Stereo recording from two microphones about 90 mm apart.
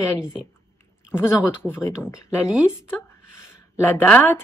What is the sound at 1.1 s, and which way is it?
Speech, 25° left (ahead or behind).